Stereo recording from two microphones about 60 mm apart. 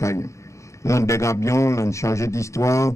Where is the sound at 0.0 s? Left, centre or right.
Left.